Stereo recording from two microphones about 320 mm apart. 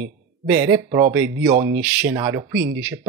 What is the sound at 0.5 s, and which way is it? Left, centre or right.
Speech, centre.